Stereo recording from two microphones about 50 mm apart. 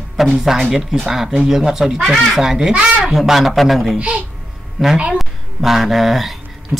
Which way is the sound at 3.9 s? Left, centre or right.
Right.